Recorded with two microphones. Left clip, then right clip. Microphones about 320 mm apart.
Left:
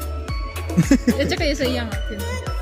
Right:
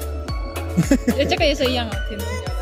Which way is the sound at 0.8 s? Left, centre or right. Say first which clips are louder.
Left 1 dB; centre.